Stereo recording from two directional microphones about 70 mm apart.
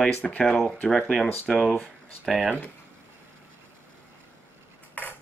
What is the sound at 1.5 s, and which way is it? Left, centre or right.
Speech, centre.